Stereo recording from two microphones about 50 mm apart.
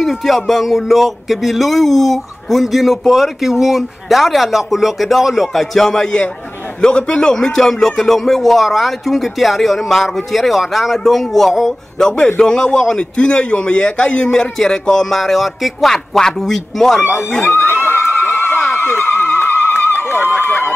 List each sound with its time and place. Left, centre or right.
0.0 s speech: centre
6.8 s a man's voice: centre
17.5 s neigh: left
18.7 s a sound: left